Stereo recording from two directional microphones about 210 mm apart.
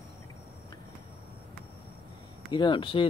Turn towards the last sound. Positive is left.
turn(degrees=25)  # may be behind; listen again after turning